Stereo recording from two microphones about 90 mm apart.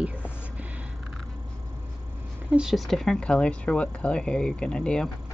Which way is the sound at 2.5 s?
5° right (ahead or behind).